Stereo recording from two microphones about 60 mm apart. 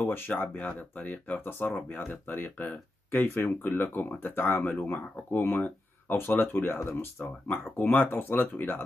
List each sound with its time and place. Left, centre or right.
0.0 s speech: left